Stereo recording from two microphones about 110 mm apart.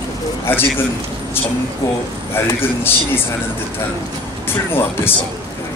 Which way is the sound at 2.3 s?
20° left (ahead or behind).